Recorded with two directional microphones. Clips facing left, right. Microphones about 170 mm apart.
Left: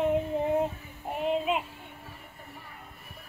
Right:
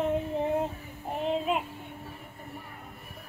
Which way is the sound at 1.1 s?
5° left (ahead or behind).